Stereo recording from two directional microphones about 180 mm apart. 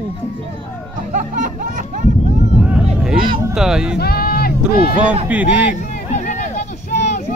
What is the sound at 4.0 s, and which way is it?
Music, 60° left (ahead or behind).